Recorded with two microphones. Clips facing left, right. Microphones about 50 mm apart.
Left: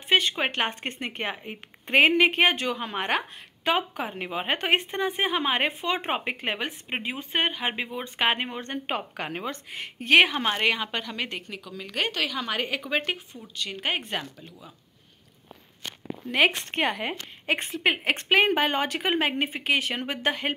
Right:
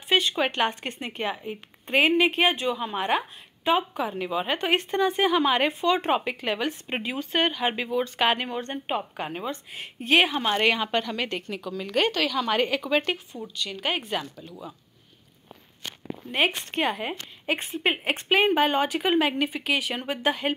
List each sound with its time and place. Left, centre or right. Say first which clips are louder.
0.1 s speech: even; left
3.9 s speech: right 3 dB; left
4.7 s speech: right 3 dB; left
8.8 s a woman's voice: right 1 dB; left
10.5 s a woman's voice: right 3 dB; centre
12.2 s a woman's voice: right 4 dB; centre
13.6 s speech: even; left
16.3 s speech: left 2 dB; left
16.7 s a woman's voice: even; left
17.7 s a woman's voice: left 1 dB; left